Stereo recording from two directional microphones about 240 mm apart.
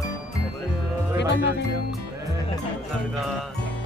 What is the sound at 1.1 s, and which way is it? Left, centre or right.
Music, left.